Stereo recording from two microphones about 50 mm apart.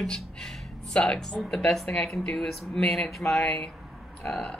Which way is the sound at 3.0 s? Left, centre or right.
Centre.